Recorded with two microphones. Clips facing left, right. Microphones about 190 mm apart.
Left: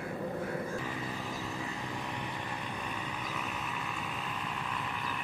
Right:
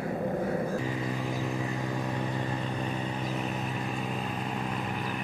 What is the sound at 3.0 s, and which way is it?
Vehicle, 35° right (ahead or behind).